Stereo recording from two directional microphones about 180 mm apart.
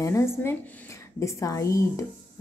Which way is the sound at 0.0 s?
15° left (ahead or behind).